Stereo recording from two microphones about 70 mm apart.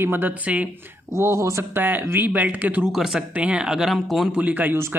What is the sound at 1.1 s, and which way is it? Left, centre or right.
Speech, right.